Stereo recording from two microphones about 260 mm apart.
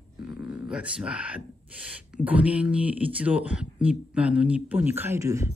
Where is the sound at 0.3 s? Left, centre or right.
Centre.